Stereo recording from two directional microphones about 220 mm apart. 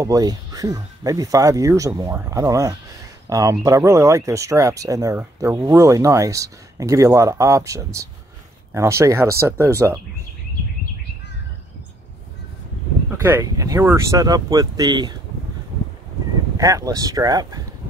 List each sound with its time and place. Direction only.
0.0 s speech: 15° right (ahead or behind)
13.4 s speech: 15° right (ahead or behind)
16.5 s speech: 15° right (ahead or behind)